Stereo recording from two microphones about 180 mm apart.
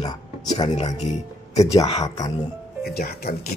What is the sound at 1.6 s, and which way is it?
Speech, 20° left (ahead or behind).